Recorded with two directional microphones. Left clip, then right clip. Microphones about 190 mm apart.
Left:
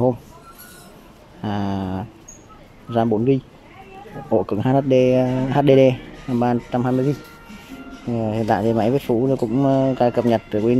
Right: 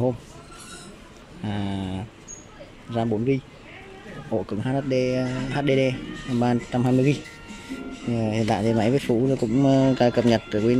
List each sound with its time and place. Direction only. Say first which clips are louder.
1.4 s a sound: left 6 dB; 10° left (ahead or behind)
2.9 s speech: left 6 dB; 10° left (ahead or behind)
6.4 s speech: left 3 dB; 5° left (ahead or behind)
8.1 s speech: left 4 dB; centre (ahead or behind)